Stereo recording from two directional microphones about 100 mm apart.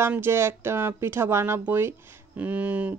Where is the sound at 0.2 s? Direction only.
25° right (ahead or behind).